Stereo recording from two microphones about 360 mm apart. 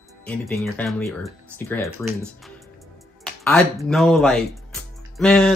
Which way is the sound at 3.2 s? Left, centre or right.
Centre.